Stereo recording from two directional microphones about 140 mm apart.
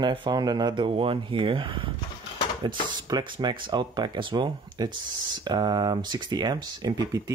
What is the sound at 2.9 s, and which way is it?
Speech, 35° right (ahead or behind).